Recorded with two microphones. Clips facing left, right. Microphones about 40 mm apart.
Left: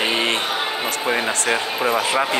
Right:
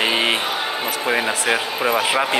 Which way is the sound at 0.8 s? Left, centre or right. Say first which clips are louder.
Right 2 dB; centre.